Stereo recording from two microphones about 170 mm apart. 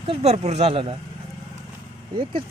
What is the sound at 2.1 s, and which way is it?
Speech, 30° right (ahead or behind).